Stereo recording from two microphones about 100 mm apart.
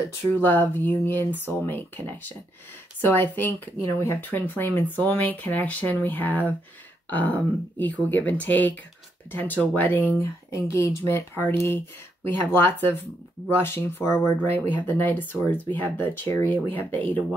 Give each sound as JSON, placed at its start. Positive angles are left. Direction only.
{"t": 0.3, "sound": "speech", "side_deg": 20}